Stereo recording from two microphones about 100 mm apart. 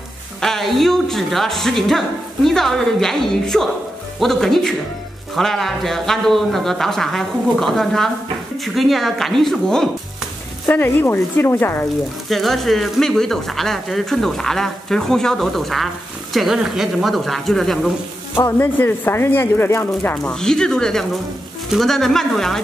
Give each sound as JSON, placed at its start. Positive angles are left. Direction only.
{"t": 0.4, "sound": "speech", "side_deg": 5}
{"t": 10.7, "sound": "speech", "side_deg": 20}
{"t": 12.3, "sound": "speech", "side_deg": 0}
{"t": 18.3, "sound": "speech", "side_deg": 25}
{"t": 20.0, "sound": "speech", "side_deg": 10}